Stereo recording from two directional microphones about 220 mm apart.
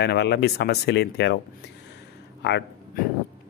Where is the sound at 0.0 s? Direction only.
50° left (ahead or behind).